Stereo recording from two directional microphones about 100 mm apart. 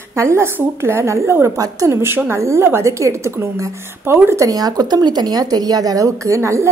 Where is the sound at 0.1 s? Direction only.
25° right (ahead or behind).